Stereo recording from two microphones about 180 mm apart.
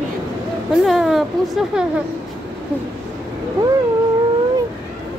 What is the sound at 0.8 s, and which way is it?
Speech, centre (ahead or behind).